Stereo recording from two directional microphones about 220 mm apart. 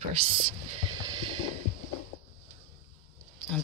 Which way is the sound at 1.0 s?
20° right (ahead or behind).